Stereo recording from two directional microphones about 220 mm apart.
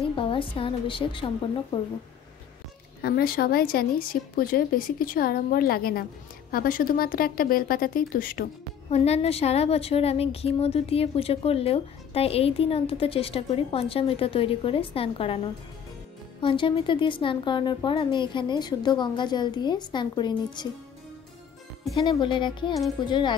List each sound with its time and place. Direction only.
0.1 s a woman's voice: 25° left (ahead or behind)
3.0 s speech: 45° left (ahead or behind)
8.9 s a woman's voice: 30° left (ahead or behind)
22.1 s a woman's voice: 20° left (ahead or behind)